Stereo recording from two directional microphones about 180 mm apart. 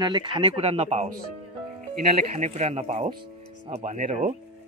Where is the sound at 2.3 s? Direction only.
40° right (ahead or behind).